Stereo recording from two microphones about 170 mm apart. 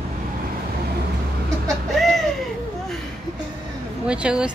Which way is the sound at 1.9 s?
Centre (ahead or behind).